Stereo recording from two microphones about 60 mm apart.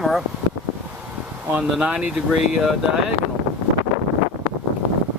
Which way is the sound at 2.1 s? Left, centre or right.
Centre.